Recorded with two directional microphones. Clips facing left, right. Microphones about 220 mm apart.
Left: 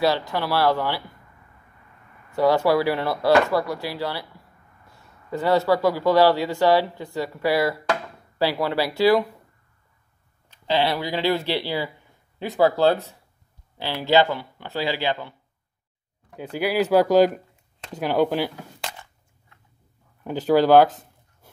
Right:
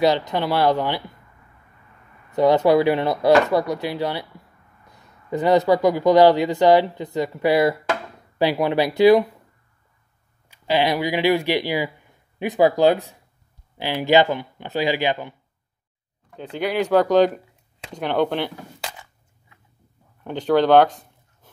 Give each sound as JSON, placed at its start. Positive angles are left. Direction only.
{"t": 0.0, "sound": "speech", "side_deg": -20}
{"t": 2.3, "sound": "speech", "side_deg": -20}
{"t": 10.5, "sound": "speech", "side_deg": -15}
{"t": 16.3, "sound": "speech", "side_deg": 5}
{"t": 20.2, "sound": "speech", "side_deg": 5}